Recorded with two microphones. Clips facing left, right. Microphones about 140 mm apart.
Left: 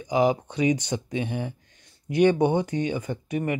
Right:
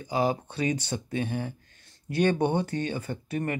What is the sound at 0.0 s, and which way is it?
Speech, 15° left (ahead or behind).